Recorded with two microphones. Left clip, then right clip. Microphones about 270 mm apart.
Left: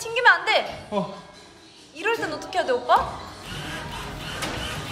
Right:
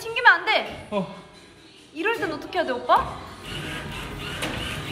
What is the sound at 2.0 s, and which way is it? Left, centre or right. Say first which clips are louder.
A woman's voice: even; centre.